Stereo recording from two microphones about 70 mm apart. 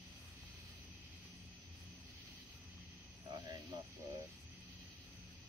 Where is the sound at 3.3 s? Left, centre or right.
Right.